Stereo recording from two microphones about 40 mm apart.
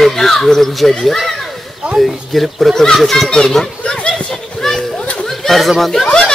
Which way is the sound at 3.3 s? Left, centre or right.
Centre.